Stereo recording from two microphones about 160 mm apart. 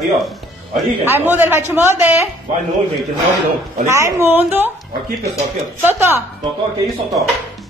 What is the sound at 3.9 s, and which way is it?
A man's voice, 20° right (ahead or behind).